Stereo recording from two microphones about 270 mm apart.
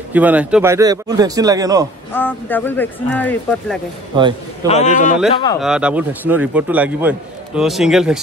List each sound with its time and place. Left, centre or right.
0.1 s speech: centre
2.1 s speech: centre
4.1 s speech: centre
4.6 s a man's voice: left
5.3 s speech: centre
5.6 s a man's voice: centre